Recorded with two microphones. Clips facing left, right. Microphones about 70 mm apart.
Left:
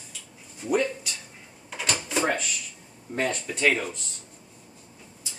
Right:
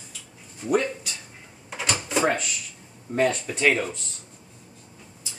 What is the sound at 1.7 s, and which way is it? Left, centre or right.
Drawer open or close, centre.